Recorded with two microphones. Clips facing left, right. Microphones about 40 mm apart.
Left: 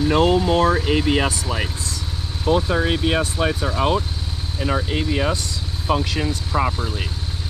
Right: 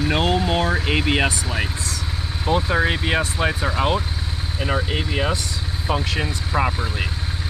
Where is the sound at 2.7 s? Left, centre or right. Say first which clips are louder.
Even; right.